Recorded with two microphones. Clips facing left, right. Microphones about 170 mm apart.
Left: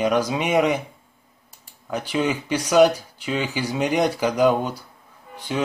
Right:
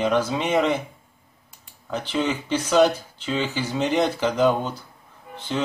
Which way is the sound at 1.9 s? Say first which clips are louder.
Left 1 dB; 10° left (ahead or behind).